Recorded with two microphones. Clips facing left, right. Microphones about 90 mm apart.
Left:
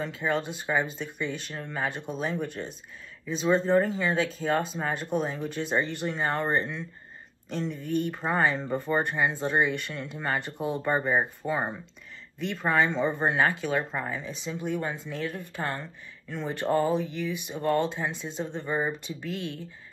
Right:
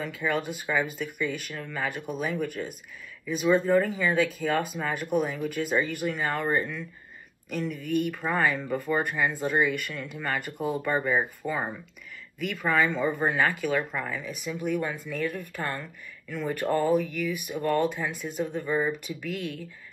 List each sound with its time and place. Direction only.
0.0 s speech: 25° left (ahead or behind)
11.4 s speech: 10° left (ahead or behind)
12.4 s speech: 30° left (ahead or behind)